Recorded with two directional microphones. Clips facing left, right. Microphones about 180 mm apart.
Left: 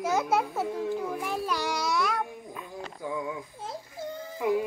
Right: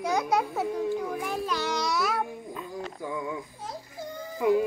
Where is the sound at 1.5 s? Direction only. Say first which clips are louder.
Right 1 dB; 10° left (ahead or behind).